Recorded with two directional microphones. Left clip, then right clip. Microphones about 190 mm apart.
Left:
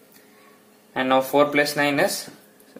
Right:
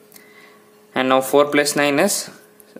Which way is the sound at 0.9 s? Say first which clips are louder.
Right 3 dB; 40° right (ahead or behind).